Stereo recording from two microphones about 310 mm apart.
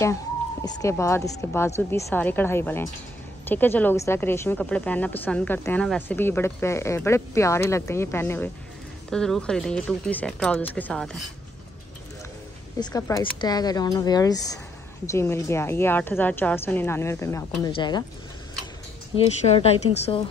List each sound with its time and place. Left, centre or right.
0.7 s a woman's voice: centre
12.7 s a woman's voice: centre
19.1 s a woman's voice: centre